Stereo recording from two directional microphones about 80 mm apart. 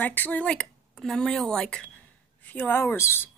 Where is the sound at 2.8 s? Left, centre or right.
Left.